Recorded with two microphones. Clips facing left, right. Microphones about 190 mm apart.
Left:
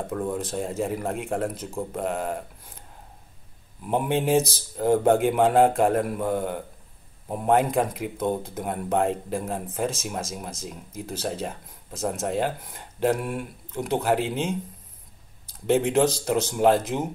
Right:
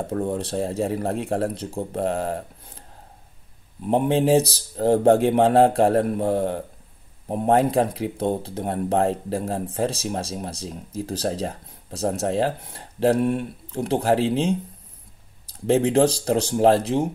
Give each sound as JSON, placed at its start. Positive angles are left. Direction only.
{"t": 0.1, "sound": "speech", "side_deg": -30}
{"t": 3.8, "sound": "speech", "side_deg": -30}